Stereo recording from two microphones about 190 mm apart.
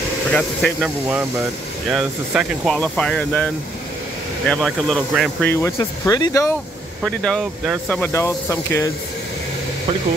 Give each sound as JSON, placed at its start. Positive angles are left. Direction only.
{"t": 0.3, "sound": "speech", "side_deg": 5}
{"t": 4.5, "sound": "speech", "side_deg": 5}
{"t": 5.5, "sound": "speech", "side_deg": 15}
{"t": 7.0, "sound": "speech", "side_deg": 0}